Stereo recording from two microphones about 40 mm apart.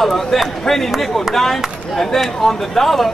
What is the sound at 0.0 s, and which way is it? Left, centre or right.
A man's voice, centre.